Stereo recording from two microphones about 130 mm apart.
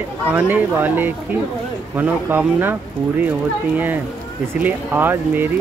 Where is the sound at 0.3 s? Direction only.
15° right (ahead or behind).